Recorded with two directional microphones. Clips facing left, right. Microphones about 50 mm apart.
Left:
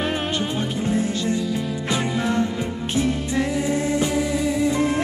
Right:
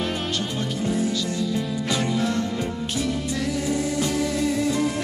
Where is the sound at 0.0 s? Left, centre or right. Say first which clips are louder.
Left 3 dB; left.